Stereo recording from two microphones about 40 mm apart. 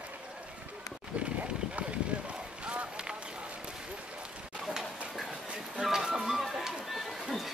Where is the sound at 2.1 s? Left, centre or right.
Right.